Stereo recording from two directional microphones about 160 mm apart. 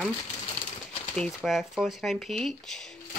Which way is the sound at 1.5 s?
Centre (ahead or behind).